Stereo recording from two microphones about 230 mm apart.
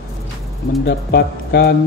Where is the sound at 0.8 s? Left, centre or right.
Left.